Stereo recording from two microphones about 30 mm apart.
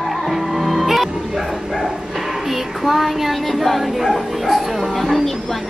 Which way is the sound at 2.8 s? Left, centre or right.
Centre.